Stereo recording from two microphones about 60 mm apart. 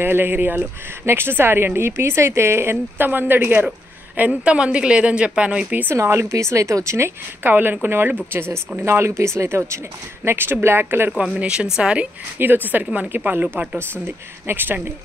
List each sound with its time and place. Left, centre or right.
0.0 s speech: right
4.2 s speech: centre
5.9 s speech: right
6.3 s speech: right
7.4 s speech: right
10.2 s speech: right
11.3 s speech: centre
12.4 s speech: right